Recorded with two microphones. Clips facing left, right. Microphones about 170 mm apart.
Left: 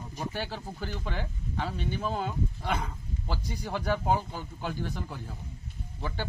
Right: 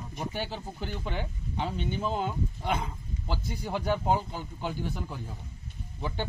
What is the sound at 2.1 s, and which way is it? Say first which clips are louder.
Speech: right 1 dB; 15° right (ahead or behind).